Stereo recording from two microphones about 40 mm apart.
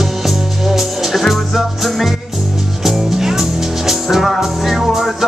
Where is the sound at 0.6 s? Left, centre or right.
Centre.